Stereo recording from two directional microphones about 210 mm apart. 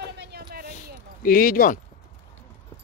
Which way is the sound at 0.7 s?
40° left (ahead or behind).